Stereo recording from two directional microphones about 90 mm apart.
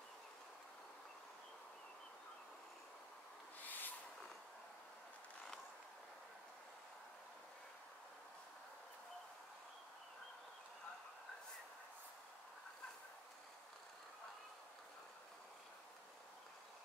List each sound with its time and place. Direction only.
3.6 s owl: 20° left (ahead or behind)